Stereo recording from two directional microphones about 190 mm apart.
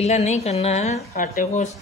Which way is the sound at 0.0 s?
35° left (ahead or behind).